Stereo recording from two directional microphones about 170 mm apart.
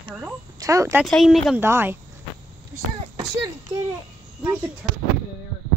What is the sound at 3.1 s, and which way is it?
Speech, 25° right (ahead or behind).